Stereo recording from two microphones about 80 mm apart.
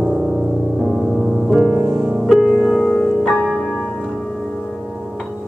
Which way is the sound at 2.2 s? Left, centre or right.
Centre.